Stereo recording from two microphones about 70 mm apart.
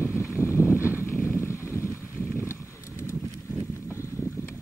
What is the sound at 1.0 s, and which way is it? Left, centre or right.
Vehicle, left.